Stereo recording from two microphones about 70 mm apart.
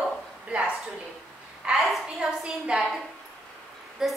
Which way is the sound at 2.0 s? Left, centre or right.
Centre.